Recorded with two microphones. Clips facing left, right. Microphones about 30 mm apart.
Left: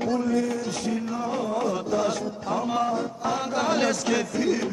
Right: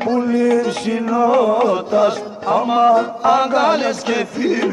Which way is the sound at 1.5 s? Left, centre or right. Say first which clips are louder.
Right 10 dB; right.